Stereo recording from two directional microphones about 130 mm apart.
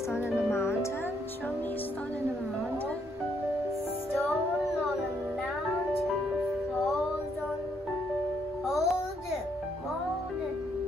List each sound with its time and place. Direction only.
0.1 s music: 20° left (ahead or behind)
8.6 s music: centre (ahead or behind)